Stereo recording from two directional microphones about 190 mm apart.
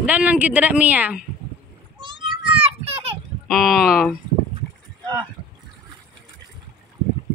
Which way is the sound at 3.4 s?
Centre (ahead or behind).